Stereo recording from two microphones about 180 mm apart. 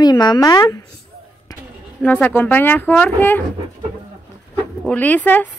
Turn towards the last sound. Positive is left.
turn(degrees=10)  # may be behind; listen again after turning